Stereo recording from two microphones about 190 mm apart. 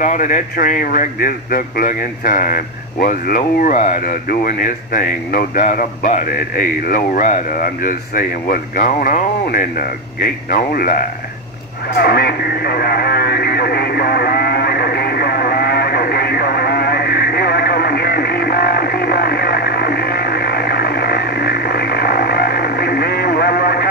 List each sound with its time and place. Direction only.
0.0 s a man's voice: 45° left (ahead or behind)
11.9 s radio: 55° left (ahead or behind)